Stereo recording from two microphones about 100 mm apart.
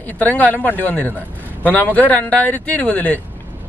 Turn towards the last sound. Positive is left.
turn(degrees=15)  # may be behind; listen again after turning